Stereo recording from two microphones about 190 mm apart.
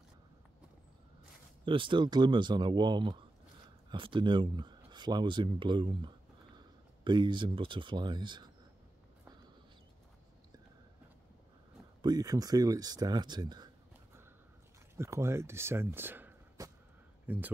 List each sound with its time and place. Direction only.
1.7 s speech: 25° right (ahead or behind)
12.0 s speech: 20° right (ahead or behind)
15.0 s speech: 15° right (ahead or behind)